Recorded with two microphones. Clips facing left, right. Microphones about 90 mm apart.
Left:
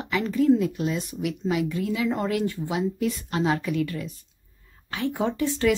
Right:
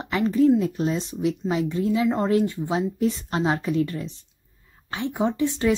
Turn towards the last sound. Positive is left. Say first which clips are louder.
# right 1 dB
turn(degrees=-20)  # may be behind; listen again after turning